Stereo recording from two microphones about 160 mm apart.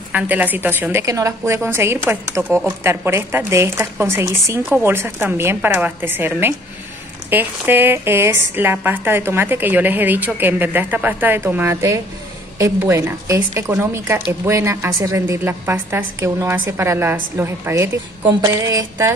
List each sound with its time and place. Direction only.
0.1 s a woman's voice: 10° right (ahead or behind)